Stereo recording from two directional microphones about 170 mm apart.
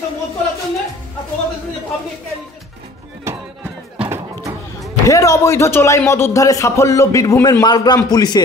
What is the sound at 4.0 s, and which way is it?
Music, 15° right (ahead or behind).